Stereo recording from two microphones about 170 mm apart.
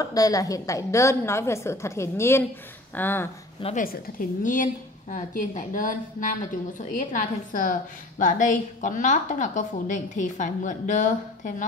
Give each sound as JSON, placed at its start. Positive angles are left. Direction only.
{"t": 0.0, "sound": "a woman's voice", "side_deg": 20}
{"t": 3.7, "sound": "a woman's voice", "side_deg": 55}